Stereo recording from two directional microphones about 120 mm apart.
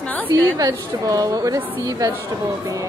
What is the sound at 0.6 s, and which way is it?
A woman's voice, 30° right (ahead or behind).